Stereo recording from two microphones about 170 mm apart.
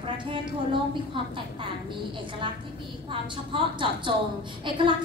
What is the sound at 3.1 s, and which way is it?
A woman's voice, 30° right (ahead or behind).